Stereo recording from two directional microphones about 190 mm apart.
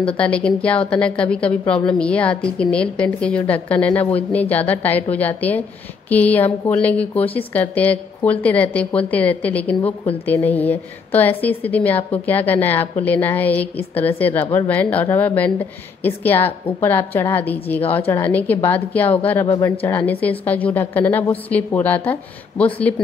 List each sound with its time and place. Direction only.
0.0 s a woman's voice: 5° left (ahead or behind)
19.4 s speech: 20° left (ahead or behind)
19.8 s a woman's voice: 10° left (ahead or behind)